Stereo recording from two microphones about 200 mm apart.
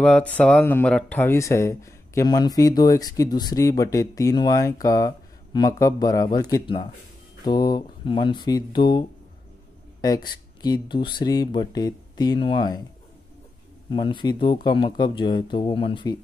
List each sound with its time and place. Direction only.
0.0 s speech: 5° left (ahead or behind); by 9.0 s 25° left (ahead or behind)
10.6 s speech: 20° left (ahead or behind)
13.8 s speech: 25° left (ahead or behind)